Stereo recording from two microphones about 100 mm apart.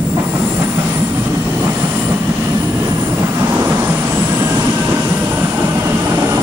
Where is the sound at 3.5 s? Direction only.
20° right (ahead or behind).